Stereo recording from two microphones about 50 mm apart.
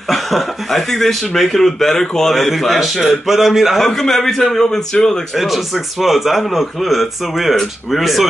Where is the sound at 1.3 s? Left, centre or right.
Centre.